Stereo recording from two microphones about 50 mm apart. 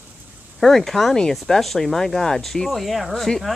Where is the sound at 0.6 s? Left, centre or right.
Centre.